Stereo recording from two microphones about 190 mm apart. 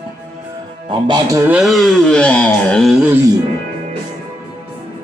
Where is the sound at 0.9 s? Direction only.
25° right (ahead or behind).